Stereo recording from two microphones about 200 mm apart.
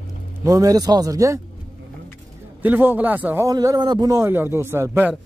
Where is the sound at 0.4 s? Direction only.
15° right (ahead or behind).